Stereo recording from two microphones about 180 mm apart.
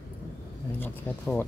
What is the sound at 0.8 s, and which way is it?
Speech, 10° left (ahead or behind).